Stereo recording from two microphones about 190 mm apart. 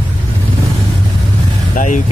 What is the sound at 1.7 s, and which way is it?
Speech, 40° left (ahead or behind).